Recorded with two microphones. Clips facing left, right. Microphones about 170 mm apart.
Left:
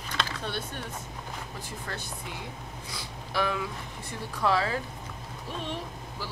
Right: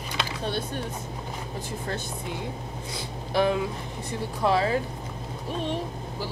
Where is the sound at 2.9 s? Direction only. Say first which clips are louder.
Right 6 dB; 25° right (ahead or behind).